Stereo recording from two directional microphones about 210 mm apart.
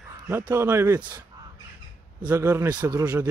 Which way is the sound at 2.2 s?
10° right (ahead or behind).